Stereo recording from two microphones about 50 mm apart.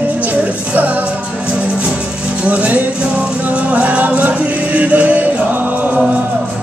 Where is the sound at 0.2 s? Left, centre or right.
Right.